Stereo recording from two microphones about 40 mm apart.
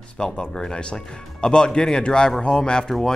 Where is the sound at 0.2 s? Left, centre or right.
Centre.